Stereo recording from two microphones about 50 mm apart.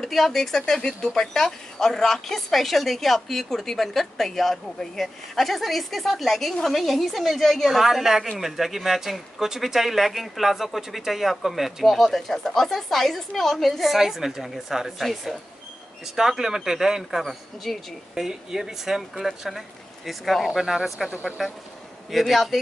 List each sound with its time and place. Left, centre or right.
0.0 s speech: centre
17.2 s speech: centre
18.1 s speech: centre
21.1 s speech: right
22.1 s speech: centre